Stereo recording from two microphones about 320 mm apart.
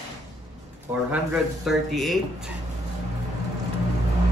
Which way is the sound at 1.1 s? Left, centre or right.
Centre.